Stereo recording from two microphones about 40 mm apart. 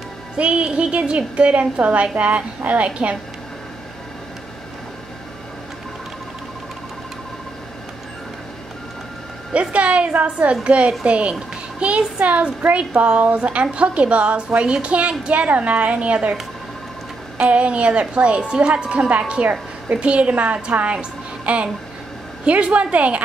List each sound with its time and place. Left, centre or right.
0.4 s a woman's voice: right
9.5 s a woman's voice: right
17.5 s a woman's voice: right